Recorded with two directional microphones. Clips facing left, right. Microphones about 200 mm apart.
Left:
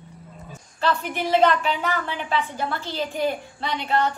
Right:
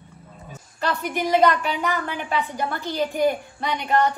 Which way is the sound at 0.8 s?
15° right (ahead or behind).